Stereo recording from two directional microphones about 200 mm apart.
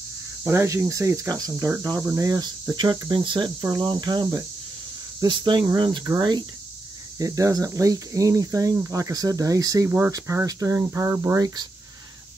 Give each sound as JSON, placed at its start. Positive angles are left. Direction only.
{"t": 0.4, "sound": "speech", "side_deg": -15}